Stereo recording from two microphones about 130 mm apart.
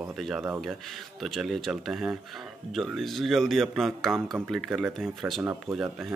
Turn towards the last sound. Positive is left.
turn(degrees=-20)  # may be behind; listen again after turning